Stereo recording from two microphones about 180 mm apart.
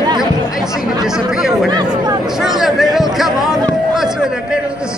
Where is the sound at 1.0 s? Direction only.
Centre (ahead or behind).